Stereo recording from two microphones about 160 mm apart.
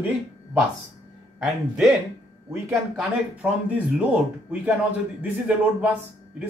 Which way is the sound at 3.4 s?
10° right (ahead or behind).